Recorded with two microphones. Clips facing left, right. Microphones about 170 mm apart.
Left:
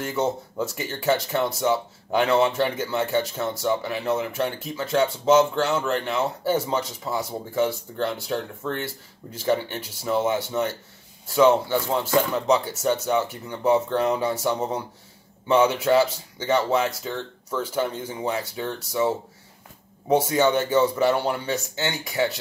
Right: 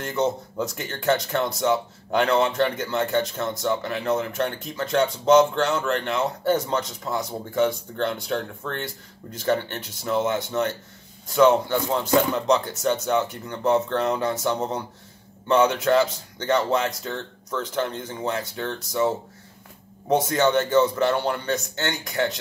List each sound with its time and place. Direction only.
0.0 s speech: 5° left (ahead or behind)